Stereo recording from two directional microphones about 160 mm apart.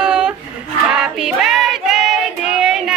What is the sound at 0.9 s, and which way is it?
Female singing, 5° right (ahead or behind).